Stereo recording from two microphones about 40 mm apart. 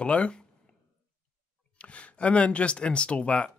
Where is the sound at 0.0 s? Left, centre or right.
Left.